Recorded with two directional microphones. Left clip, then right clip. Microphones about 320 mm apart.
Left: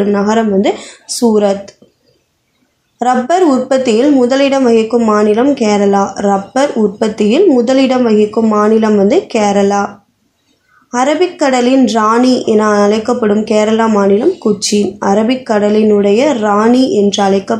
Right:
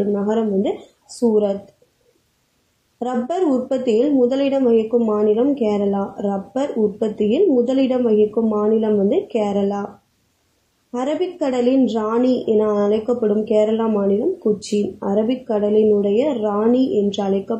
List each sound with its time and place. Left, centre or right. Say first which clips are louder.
0.1 s a woman's voice: left 8 dB; left
3.0 s a woman's voice: left 11 dB; left
10.9 s a woman's voice: left 10 dB; left